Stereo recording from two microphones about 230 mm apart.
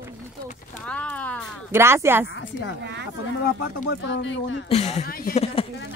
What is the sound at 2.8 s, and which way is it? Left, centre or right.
Speech, right.